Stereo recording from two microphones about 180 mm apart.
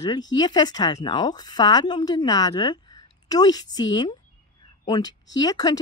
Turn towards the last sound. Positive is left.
turn(degrees=20)  # may be behind; listen again after turning